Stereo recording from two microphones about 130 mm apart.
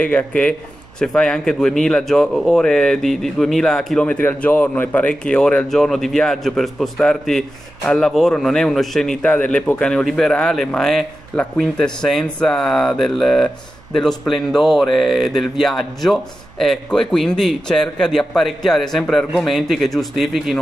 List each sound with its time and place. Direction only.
0.0 s a man's voice: 10° left (ahead or behind)